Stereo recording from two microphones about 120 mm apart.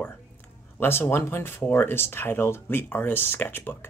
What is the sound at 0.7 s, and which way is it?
Speech, 20° left (ahead or behind).